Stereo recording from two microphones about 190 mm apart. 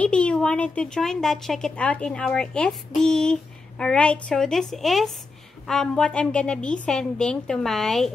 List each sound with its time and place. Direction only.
0.0 s a woman's voice: 5° left (ahead or behind)